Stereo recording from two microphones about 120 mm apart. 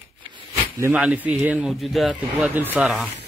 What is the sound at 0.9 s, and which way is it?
Speech, 5° right (ahead or behind).